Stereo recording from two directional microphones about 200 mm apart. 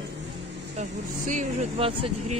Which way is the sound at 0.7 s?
40° right (ahead or behind).